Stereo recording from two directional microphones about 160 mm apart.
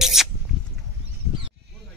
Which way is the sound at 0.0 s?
Centre (ahead or behind).